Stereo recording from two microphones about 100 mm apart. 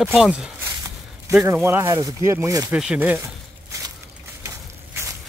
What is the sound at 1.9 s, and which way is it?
Speech, 35° right (ahead or behind).